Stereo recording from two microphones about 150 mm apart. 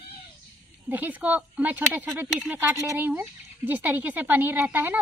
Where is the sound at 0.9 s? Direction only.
10° right (ahead or behind).